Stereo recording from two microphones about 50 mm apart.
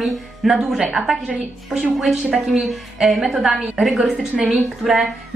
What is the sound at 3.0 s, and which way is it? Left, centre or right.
Speech, centre.